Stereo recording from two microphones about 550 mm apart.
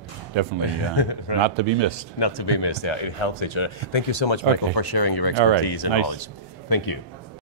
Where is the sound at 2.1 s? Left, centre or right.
Left.